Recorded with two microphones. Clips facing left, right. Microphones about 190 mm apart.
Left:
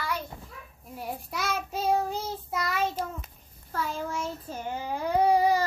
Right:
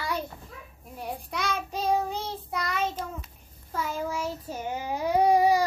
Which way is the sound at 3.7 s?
10° right (ahead or behind).